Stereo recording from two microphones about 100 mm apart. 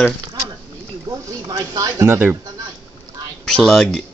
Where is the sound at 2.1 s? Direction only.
20° right (ahead or behind).